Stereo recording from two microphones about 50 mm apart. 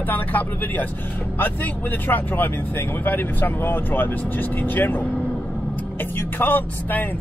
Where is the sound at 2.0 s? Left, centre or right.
Left.